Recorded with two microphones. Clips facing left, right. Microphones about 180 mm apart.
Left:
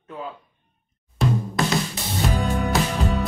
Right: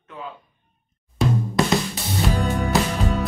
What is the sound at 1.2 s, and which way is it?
Drum, centre (ahead or behind).